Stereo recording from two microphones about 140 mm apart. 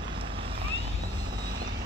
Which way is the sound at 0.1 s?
40° right (ahead or behind).